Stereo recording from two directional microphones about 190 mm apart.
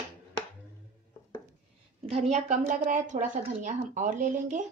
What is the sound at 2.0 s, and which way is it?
Speech, 35° right (ahead or behind).